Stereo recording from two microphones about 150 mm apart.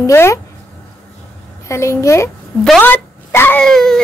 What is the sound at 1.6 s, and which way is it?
A child's voice, 20° left (ahead or behind).